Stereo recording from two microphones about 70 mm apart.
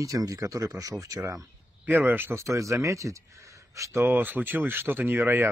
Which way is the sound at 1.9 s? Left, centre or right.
Right.